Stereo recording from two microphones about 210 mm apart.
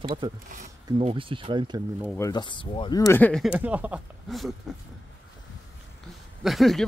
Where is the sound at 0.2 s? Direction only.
20° right (ahead or behind).